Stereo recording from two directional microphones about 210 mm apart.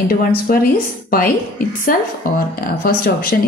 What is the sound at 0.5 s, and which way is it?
Speech, 45° left (ahead or behind).